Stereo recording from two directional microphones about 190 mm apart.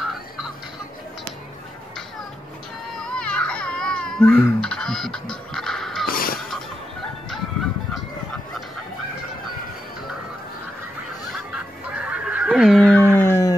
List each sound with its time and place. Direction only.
3.0 s crying: 5° left (ahead or behind)
6.0 s music: 50° left (ahead or behind)
11.3 s fowl: 5° right (ahead or behind)
13.1 s dog: 10° left (ahead or behind)